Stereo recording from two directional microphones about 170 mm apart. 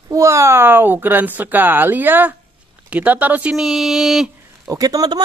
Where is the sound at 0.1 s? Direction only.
20° right (ahead or behind); by 4.3 s centre (ahead or behind).